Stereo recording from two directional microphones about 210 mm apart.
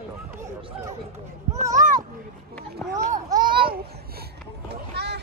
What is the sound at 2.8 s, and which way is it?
Children playing, 10° left (ahead or behind).